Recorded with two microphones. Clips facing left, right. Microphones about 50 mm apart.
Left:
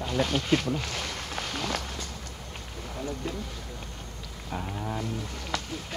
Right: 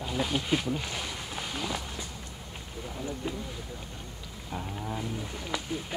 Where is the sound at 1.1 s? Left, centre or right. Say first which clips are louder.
Left 3 dB; left.